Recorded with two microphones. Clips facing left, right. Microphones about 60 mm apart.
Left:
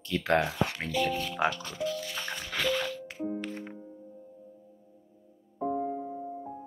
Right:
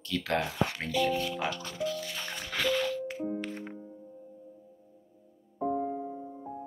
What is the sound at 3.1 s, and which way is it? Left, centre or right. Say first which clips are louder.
Music: even; centre.